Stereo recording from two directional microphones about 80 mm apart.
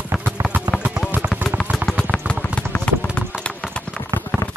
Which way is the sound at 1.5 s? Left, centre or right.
Centre.